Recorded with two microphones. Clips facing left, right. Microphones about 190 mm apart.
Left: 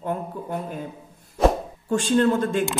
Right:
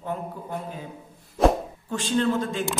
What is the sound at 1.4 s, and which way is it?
Speech, centre (ahead or behind).